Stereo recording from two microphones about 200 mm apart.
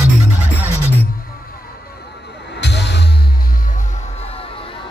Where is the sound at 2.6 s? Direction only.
60° left (ahead or behind).